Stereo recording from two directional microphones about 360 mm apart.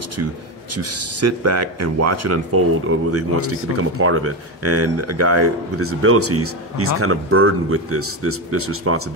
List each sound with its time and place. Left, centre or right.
0.7 s speech: right